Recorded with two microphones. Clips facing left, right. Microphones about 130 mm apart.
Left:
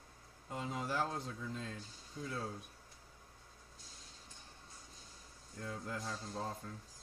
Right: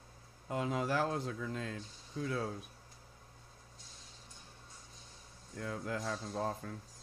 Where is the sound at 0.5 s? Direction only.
80° right.